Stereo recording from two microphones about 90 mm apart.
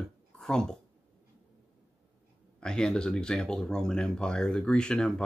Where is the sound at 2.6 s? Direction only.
10° left (ahead or behind).